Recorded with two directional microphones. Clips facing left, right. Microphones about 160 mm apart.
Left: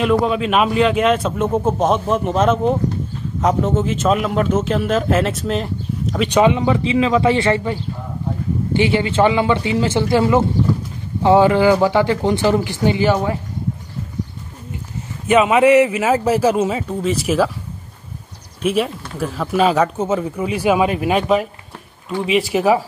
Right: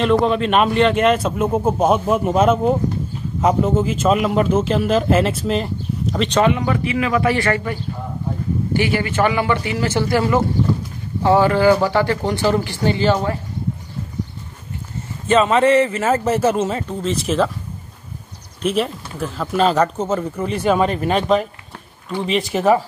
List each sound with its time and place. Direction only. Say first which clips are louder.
0.0 s speech: even; 5° left (ahead or behind)
6.1 s a man's voice: left 2 dB; 10° left (ahead or behind)
15.2 s a man's voice: left 2 dB; 10° left (ahead or behind)
18.6 s speech: left 1 dB; 5° left (ahead or behind)